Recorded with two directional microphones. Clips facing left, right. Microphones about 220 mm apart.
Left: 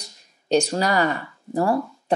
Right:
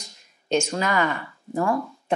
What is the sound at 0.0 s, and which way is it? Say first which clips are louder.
Speech: left 2 dB; 35° left (ahead or behind).